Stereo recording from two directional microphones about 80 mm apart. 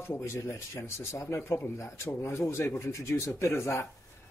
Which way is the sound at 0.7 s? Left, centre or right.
Left.